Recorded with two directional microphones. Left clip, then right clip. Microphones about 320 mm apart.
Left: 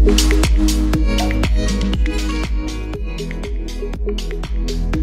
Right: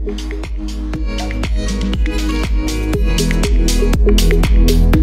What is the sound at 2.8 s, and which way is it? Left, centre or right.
Music, right.